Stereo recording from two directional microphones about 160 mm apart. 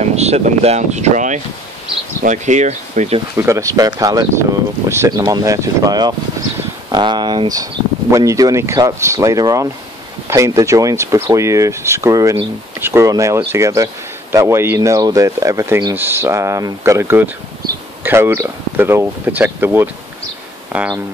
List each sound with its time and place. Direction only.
0.0 s speech: 40° right (ahead or behind)
3.3 s speech: 20° right (ahead or behind)